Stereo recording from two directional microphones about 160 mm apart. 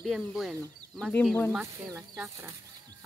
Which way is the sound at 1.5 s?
15° right (ahead or behind).